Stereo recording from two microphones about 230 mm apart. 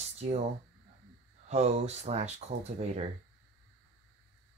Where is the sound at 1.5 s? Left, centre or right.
Right.